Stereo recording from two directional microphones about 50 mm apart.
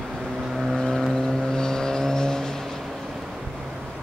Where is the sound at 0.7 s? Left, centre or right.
Centre.